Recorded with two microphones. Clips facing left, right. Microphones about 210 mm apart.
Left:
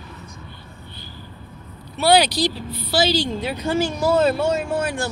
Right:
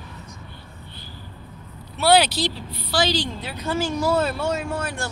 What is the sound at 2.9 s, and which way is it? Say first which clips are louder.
A woman's voice: left 3 dB; 10° left (ahead or behind).